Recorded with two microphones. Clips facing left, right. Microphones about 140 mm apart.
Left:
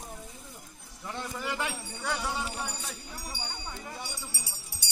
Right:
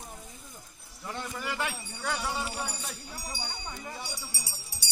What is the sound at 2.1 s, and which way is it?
Speech, 10° right (ahead or behind).